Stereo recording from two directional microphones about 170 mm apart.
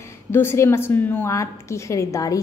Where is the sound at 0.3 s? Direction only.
15° left (ahead or behind).